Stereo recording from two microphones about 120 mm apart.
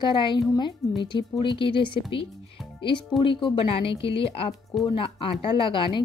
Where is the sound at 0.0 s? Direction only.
40° left (ahead or behind).